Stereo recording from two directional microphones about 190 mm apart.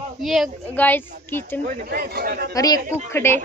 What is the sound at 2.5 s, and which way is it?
Speech, 20° left (ahead or behind).